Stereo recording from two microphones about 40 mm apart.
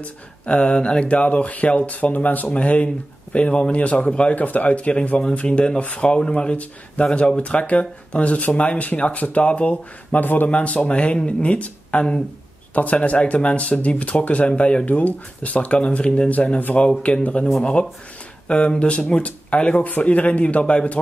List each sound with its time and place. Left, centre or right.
0.0 s speech: left
10.2 s speech: left
10.5 s speech: left
13.0 s speech: left
16.3 s speech: left
18.5 s speech: left